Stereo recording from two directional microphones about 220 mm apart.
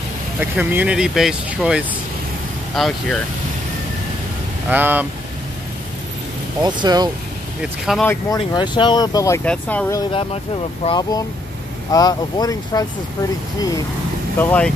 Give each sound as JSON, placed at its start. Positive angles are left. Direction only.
{"t": 0.4, "sound": "speech", "side_deg": -5}
{"t": 4.6, "sound": "speech", "side_deg": -10}
{"t": 6.6, "sound": "speech", "side_deg": -20}
{"t": 7.6, "sound": "speech", "side_deg": 0}
{"t": 8.4, "sound": "speech", "side_deg": 20}
{"t": 10.3, "sound": "speech", "side_deg": 25}